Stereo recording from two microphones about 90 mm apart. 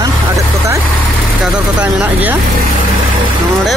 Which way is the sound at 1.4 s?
10° right (ahead or behind).